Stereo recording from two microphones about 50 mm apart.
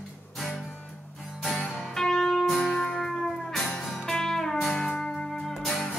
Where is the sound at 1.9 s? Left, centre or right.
Centre.